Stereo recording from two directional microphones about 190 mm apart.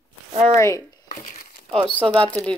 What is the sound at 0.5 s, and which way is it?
Speech, 15° left (ahead or behind).